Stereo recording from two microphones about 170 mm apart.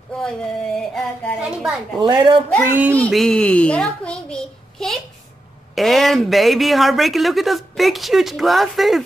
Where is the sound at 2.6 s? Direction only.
10° right (ahead or behind).